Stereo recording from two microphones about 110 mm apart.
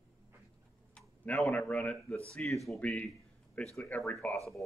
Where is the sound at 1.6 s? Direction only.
15° left (ahead or behind).